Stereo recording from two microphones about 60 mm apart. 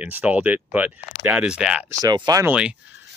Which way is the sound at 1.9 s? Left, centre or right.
Right.